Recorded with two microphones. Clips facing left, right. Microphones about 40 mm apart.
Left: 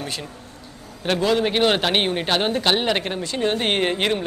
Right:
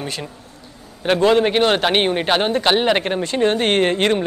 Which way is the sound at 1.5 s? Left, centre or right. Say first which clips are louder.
Right 3 dB; centre.